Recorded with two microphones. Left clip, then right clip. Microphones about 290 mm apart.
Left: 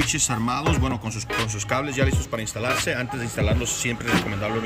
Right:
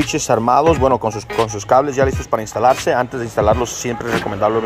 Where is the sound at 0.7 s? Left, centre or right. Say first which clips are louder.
Right 13 dB; centre.